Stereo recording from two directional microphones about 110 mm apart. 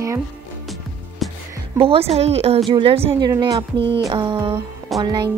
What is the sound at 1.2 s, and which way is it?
Music, centre (ahead or behind).